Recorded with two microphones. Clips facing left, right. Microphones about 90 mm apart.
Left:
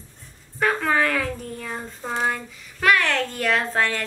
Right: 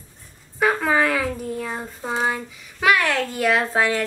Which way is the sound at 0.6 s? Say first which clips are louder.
Right 2 dB; 5° right (ahead or behind).